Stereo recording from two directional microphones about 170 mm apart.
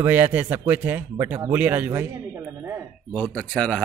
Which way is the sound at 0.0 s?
10° right (ahead or behind).